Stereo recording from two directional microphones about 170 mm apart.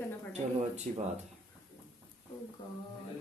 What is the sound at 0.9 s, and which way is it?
Speech, 50° right (ahead or behind).